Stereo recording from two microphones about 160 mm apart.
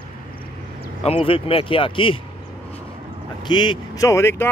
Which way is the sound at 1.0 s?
35° left (ahead or behind).